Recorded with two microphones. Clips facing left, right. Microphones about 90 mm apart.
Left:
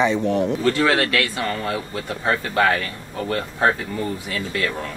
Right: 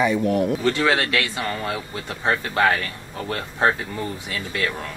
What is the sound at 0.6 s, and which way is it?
Speech, 20° right (ahead or behind).